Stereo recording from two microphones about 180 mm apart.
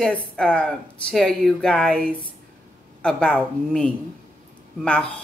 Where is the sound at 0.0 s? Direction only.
5° left (ahead or behind).